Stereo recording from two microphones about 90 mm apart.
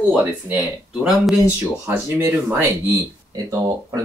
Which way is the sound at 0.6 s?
5° right (ahead or behind).